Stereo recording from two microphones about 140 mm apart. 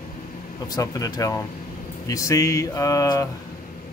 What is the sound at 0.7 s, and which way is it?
Speech, 25° left (ahead or behind).